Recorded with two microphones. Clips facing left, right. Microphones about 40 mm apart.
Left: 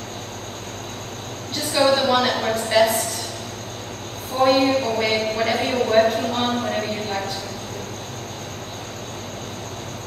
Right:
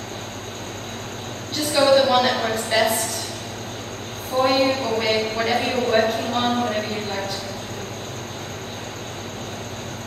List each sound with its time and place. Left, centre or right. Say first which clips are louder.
1.5 s a woman's voice: right 2 dB; centre
4.4 s a man's voice: left 2 dB; centre